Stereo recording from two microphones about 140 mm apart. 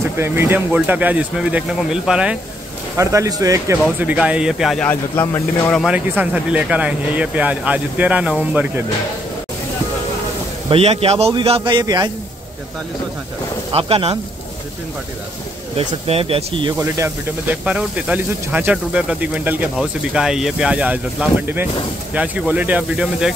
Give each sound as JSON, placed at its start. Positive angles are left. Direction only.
{"t": 0.2, "sound": "speech", "side_deg": -15}
{"t": 3.0, "sound": "speech", "side_deg": -20}
{"t": 4.0, "sound": "speech", "side_deg": -10}
{"t": 4.8, "sound": "speech", "side_deg": 15}
{"t": 5.9, "sound": "speech", "side_deg": -10}
{"t": 10.7, "sound": "a man's voice", "side_deg": -45}
{"t": 13.7, "sound": "speech", "side_deg": -45}
{"t": 16.1, "sound": "speech", "side_deg": -45}
{"t": 16.7, "sound": "speech", "side_deg": -20}
{"t": 17.6, "sound": "speech", "side_deg": -10}